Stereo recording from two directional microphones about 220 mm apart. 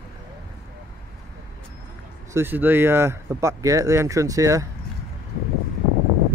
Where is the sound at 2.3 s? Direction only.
10° right (ahead or behind).